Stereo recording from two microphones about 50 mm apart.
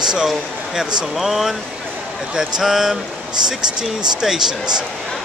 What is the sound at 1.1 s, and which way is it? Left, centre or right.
Speech, centre.